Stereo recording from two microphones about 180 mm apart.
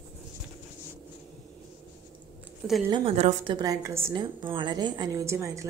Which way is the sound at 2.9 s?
35° right (ahead or behind).